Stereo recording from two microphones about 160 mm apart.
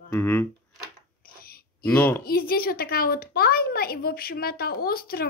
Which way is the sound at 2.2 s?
70° left (ahead or behind).